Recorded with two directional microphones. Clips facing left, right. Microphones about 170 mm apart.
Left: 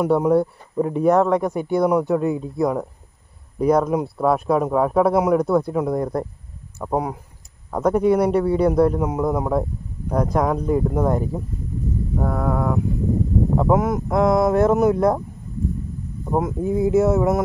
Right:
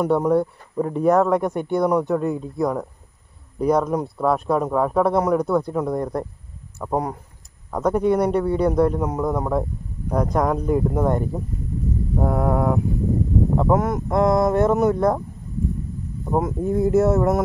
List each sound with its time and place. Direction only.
0.0 s a man's voice: 5° left (ahead or behind)
12.2 s a sound: 20° right (ahead or behind)
13.6 s a man's voice: centre (ahead or behind)
16.3 s a man's voice: centre (ahead or behind)